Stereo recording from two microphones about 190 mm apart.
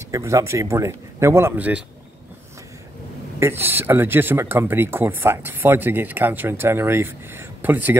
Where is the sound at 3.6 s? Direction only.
10° right (ahead or behind).